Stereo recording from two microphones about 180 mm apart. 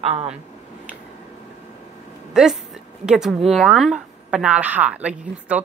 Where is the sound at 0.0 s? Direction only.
30° right (ahead or behind).